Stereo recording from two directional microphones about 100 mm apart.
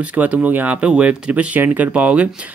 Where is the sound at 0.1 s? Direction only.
15° right (ahead or behind).